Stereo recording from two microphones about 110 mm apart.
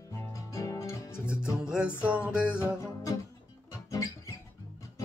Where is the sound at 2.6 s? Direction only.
25° left (ahead or behind).